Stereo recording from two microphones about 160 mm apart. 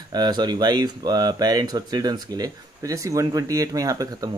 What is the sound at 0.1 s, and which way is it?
Speech, 25° right (ahead or behind).